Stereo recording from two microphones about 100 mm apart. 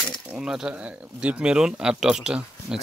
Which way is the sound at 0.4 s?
5° right (ahead or behind).